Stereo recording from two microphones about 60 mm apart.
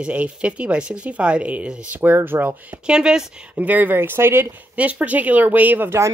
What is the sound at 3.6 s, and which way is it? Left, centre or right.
Speech, right.